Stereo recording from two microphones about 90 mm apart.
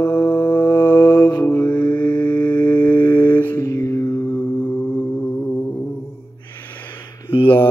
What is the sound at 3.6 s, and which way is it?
Music, 35° left (ahead or behind).